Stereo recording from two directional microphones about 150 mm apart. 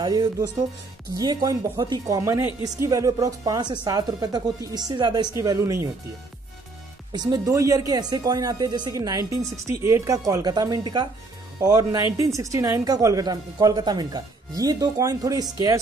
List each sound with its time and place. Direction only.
0.0 s speech: 25° right (ahead or behind)
7.1 s speech: 30° right (ahead or behind)